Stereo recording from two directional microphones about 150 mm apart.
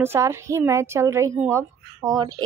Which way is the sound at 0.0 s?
15° right (ahead or behind).